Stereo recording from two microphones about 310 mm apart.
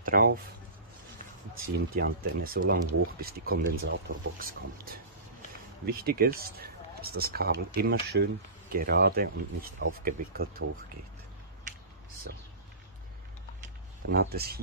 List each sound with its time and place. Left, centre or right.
0.0 s speech: right
2.0 s speech: right
12.3 s speech: right
14.0 s speech: right